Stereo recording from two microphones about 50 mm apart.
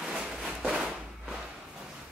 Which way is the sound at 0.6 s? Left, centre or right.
Centre.